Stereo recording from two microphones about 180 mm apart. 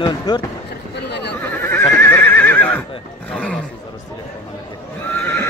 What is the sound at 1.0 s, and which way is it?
Neigh, 70° left (ahead or behind).